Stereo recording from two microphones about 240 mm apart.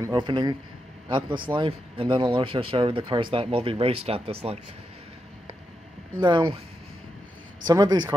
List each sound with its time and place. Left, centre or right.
0.0 s a man's voice: centre
6.1 s speech: centre
7.6 s a man's voice: centre